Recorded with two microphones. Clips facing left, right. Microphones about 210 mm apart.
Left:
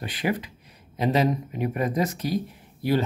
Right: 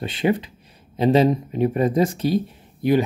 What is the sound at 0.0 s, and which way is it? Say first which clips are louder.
Speech: right 6 dB; 25° right (ahead or behind).